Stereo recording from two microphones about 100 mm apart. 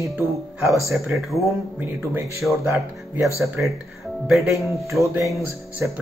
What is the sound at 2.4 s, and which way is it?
Speech, centre (ahead or behind).